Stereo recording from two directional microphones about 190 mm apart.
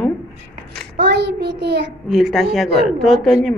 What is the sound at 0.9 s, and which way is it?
Child singing, 65° right (ahead or behind).